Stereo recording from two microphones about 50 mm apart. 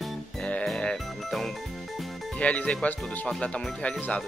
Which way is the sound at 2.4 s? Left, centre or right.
Left.